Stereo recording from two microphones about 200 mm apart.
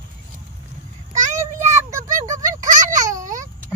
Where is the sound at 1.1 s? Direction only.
40° right (ahead or behind).